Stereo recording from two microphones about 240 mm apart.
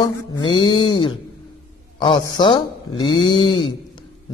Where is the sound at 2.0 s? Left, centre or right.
Centre.